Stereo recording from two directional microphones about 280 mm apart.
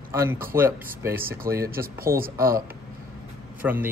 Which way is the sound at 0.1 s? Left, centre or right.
Centre.